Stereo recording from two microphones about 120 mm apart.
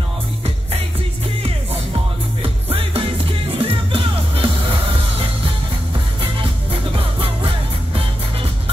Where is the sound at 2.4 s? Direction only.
50° right (ahead or behind).